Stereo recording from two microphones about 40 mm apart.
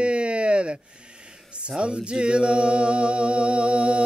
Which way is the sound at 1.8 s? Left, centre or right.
Right.